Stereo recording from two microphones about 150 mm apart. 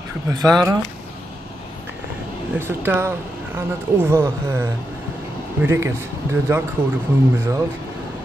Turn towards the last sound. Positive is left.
turn(degrees=-15)  # may be behind; listen again after turning